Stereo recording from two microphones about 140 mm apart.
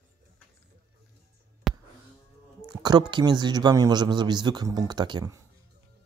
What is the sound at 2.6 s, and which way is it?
Speech, 30° right (ahead or behind).